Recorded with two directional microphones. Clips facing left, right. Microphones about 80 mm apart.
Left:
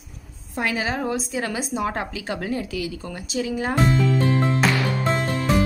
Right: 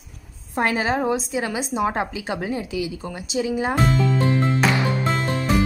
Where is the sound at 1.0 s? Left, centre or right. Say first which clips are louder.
Right 2 dB; centre.